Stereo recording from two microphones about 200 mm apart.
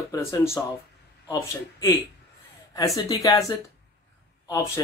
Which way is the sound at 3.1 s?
15° left (ahead or behind).